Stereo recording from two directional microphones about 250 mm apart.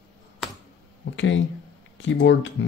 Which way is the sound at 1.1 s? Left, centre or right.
Left.